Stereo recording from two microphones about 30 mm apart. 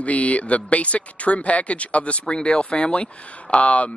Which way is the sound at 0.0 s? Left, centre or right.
Left.